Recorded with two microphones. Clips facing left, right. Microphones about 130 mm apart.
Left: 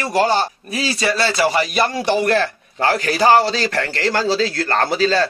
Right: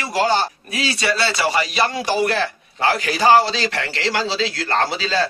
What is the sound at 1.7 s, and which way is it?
A man's voice, 50° left (ahead or behind).